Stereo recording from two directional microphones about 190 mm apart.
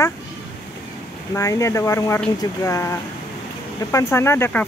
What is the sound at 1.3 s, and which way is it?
Speech, 15° left (ahead or behind).